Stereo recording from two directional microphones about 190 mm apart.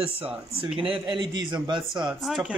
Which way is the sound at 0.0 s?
30° right (ahead or behind).